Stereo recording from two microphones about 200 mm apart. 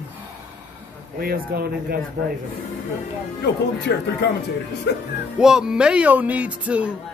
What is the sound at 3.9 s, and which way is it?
Speech, 55° left (ahead or behind).